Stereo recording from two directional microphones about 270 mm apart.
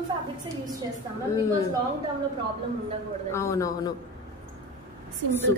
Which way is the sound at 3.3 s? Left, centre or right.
Centre.